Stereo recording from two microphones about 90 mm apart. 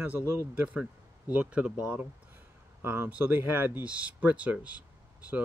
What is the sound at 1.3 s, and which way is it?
Speech, 15° right (ahead or behind).